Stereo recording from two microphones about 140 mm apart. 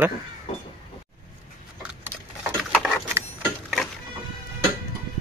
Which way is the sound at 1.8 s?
15° right (ahead or behind).